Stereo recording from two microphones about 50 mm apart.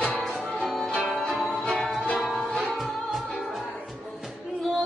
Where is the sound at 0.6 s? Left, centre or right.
Centre.